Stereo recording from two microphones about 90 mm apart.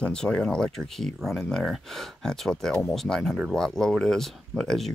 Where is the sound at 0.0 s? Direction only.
10° left (ahead or behind).